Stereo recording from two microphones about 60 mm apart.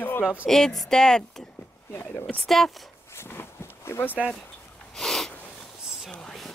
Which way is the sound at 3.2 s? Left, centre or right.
Left.